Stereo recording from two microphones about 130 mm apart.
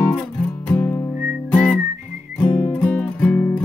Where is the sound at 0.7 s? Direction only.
20° left (ahead or behind).